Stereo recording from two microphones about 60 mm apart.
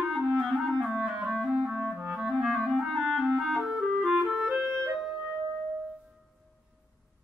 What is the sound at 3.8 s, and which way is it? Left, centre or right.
Clarinet, centre.